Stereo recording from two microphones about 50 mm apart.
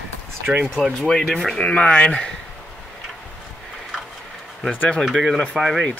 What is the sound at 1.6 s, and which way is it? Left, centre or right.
Speech, left.